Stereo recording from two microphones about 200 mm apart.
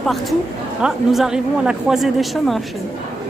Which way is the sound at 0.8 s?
Centre (ahead or behind).